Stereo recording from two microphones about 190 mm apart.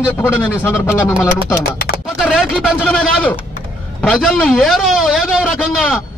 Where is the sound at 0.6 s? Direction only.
15° left (ahead or behind).